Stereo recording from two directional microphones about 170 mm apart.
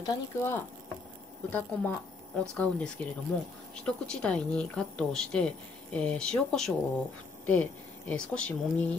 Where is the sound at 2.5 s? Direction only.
5° left (ahead or behind).